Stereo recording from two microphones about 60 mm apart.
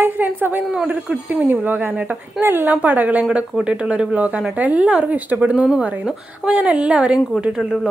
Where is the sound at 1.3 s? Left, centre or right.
Right.